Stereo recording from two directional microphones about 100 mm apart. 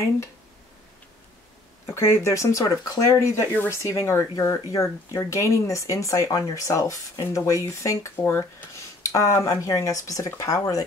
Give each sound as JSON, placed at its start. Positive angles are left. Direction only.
{"t": 2.0, "sound": "speech", "side_deg": 30}
{"t": 9.0, "sound": "speech", "side_deg": 30}